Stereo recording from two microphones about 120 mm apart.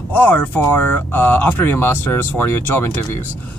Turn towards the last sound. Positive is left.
turn(degrees=20)  # may be behind; listen again after turning